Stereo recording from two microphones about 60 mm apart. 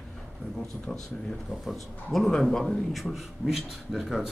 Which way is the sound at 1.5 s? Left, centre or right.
Centre.